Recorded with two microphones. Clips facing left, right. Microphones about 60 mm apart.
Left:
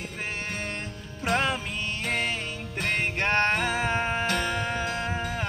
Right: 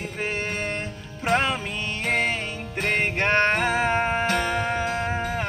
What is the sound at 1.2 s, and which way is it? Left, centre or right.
Music, right.